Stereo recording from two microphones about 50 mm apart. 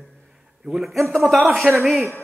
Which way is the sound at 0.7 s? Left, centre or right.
Centre.